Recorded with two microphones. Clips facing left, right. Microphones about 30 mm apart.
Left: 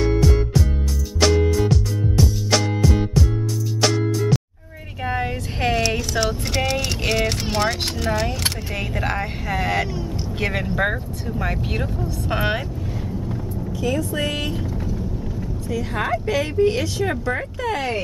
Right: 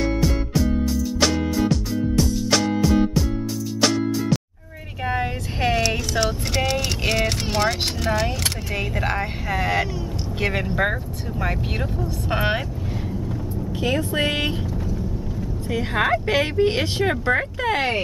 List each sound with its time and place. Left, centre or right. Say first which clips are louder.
0.0 s music: left 3 dB; centre
5.0 s vehicle: even; centre
10.4 s speech: even; centre
13.7 s speech: right 1 dB; right
15.7 s speech: right 3 dB; right